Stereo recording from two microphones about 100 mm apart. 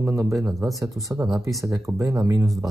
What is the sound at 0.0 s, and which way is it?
Speech, 30° right (ahead or behind).